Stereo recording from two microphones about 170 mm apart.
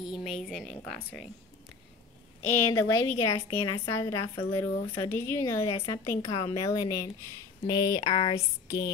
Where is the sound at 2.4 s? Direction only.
15° left (ahead or behind).